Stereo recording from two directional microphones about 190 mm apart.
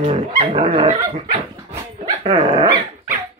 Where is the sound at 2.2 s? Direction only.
30° right (ahead or behind).